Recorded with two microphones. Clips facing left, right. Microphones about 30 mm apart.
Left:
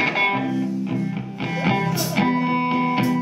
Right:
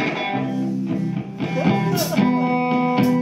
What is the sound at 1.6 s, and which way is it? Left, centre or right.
Music, centre.